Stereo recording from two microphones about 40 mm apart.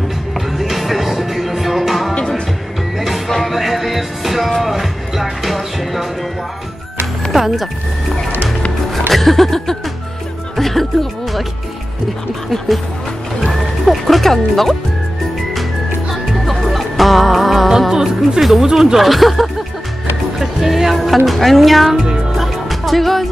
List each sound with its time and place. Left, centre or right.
0.6 s music: centre
2.1 s music: left
3.3 s music: centre
7.3 s music: centre
9.1 s music: centre
12.4 s speech: centre
13.4 s music: centre
16.1 s music: centre
18.4 s speech: centre
18.9 s speech: centre
20.3 s music: centre
21.3 s speech: centre
22.3 s music: centre